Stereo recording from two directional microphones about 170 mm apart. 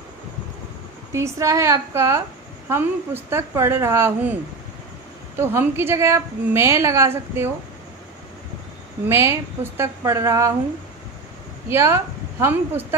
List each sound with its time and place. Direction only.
1.1 s a woman's voice: 15° right (ahead or behind)
5.4 s a woman's voice: 15° right (ahead or behind)
9.1 s a woman's voice: 15° right (ahead or behind)
11.7 s a woman's voice: 15° right (ahead or behind)